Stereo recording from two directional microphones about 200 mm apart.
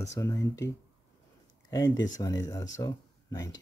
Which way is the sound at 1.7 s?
15° left (ahead or behind).